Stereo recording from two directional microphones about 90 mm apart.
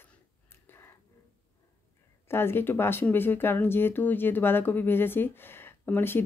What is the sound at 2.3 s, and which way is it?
Speech, 25° left (ahead or behind).